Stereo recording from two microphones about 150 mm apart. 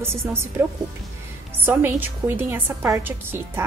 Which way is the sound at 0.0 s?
15° right (ahead or behind).